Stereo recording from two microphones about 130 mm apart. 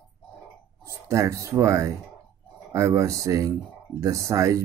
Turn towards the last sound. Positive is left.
turn(degrees=-25)  # may be behind; listen again after turning